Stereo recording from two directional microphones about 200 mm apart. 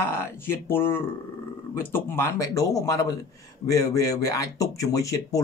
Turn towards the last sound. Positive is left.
turn(degrees=15)  # may be behind; listen again after turning